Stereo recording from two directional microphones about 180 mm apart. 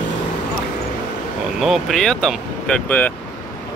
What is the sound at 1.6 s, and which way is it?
Speech, centre (ahead or behind).